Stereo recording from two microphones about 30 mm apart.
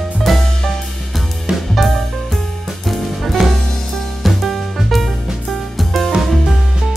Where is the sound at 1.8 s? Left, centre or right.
Centre.